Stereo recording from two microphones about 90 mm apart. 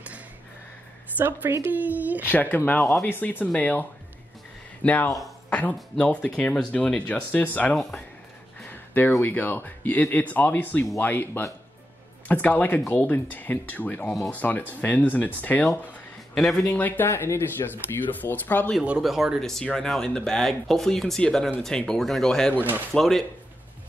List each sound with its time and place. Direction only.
1.1 s a woman's voice: 25° right (ahead or behind)
2.2 s speech: 20° left (ahead or behind)
4.8 s speech: 15° left (ahead or behind)
7.7 s speech: 5° left (ahead or behind)
8.5 s a sound: 20° left (ahead or behind)
9.2 s speech: 20° left (ahead or behind)
14.0 s speech: centre (ahead or behind)
14.3 s speech: 20° left (ahead or behind)
16.3 s speech: 5° left (ahead or behind)
16.7 s speech: 20° left (ahead or behind)
18.8 s speech: 5° right (ahead or behind)